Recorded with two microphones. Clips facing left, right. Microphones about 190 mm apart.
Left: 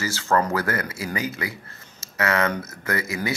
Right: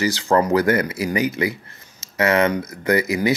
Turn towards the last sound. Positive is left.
turn(degrees=-20)  # may be behind; listen again after turning